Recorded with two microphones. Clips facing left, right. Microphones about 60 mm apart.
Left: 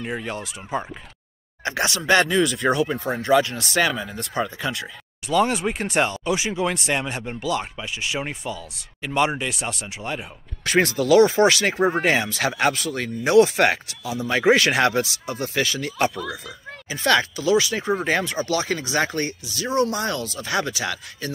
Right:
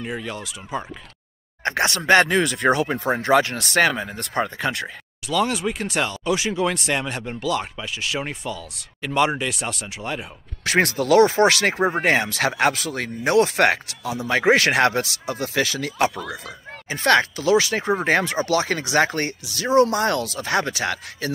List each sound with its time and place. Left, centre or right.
0.0 s speech: centre
1.6 s speech: right
5.2 s speech: left; by 10.2 s centre
10.6 s speech: right
12.0 s speech: right
13.3 s speech: right
16.4 s speech: right
20.5 s speech: right
21.2 s speech: right